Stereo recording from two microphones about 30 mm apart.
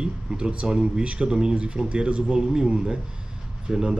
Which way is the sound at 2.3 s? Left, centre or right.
Right.